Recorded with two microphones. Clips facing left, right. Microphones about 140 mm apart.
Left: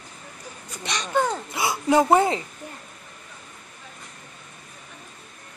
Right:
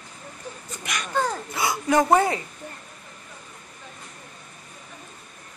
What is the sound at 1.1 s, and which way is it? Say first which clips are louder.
Speech: left 2 dB; 15° left (ahead or behind).